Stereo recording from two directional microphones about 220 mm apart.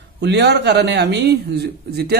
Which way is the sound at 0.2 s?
50° right (ahead or behind).